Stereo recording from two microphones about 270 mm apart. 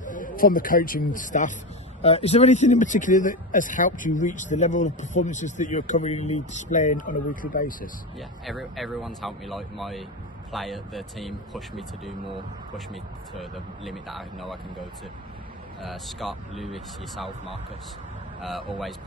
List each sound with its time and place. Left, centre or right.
0.0 s a sound: left
0.4 s speech: left
8.5 s speech: centre
15.8 s speech: centre